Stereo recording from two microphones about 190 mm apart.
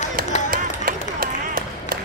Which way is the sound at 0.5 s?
50° right (ahead or behind).